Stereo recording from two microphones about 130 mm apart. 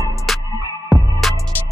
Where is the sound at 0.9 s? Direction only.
Centre (ahead or behind).